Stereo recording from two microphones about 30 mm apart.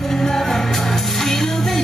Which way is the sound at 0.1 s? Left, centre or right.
Centre.